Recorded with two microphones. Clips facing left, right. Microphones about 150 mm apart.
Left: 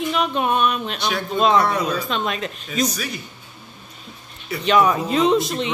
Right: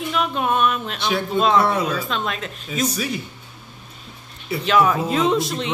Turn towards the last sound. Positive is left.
turn(degrees=0)  # may be behind; listen again after turning